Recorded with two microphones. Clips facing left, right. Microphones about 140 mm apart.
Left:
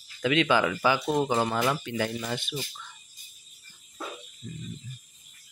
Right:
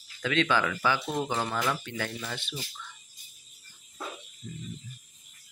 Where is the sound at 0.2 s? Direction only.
10° left (ahead or behind).